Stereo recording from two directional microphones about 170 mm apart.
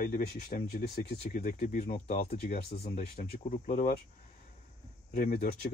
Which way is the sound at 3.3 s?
50° left (ahead or behind).